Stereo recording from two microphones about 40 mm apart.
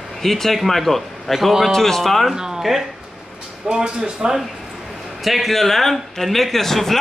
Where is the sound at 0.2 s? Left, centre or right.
Centre.